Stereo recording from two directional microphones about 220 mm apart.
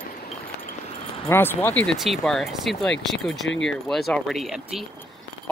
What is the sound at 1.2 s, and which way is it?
Speech, 10° left (ahead or behind).